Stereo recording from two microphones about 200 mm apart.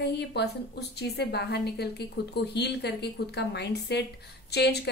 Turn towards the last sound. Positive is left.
turn(degrees=55)  # may be behind; listen again after turning